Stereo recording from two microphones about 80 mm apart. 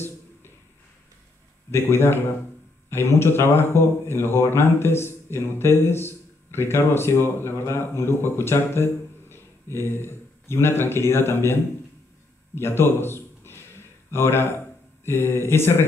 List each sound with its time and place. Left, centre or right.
1.7 s speech: left
12.5 s a sound: left
15.0 s speech: left